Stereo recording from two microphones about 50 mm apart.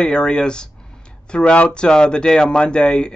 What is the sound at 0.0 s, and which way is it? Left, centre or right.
Speech, centre.